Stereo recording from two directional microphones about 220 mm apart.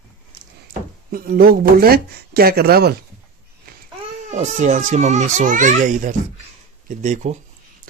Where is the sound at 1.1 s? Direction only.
40° right (ahead or behind).